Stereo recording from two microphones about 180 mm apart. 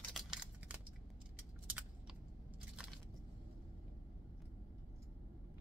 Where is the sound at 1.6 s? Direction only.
5° right (ahead or behind).